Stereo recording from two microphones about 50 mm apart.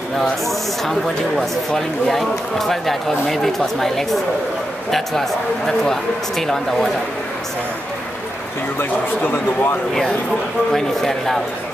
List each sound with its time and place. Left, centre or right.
0.2 s speech: centre
5.7 s speech: centre
8.7 s speech: left
10.7 s speech: centre